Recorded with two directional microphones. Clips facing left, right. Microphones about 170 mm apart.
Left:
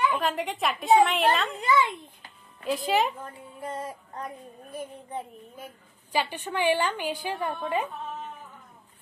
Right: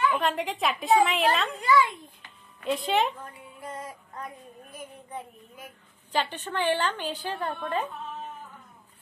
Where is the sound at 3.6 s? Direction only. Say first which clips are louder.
Left 4 dB; 30° left (ahead or behind).